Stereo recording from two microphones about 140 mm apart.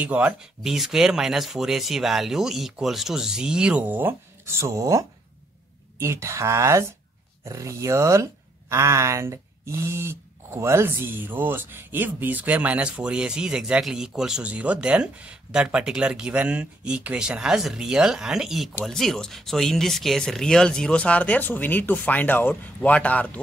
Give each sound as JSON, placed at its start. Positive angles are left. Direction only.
{"t": 0.0, "sound": "speech", "side_deg": -10}